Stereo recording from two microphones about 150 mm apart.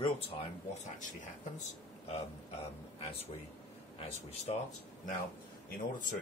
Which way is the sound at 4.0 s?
45° left (ahead or behind).